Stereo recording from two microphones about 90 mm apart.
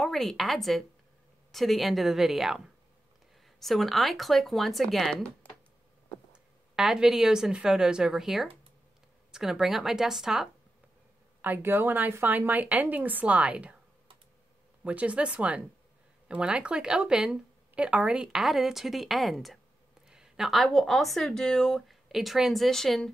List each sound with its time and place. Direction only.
0.0 s speech: centre (ahead or behind)
6.3 s speech: 10° right (ahead or behind)
11.4 s speech: 20° right (ahead or behind)
14.9 s speech: 15° right (ahead or behind); by 23.1 s 5° left (ahead or behind)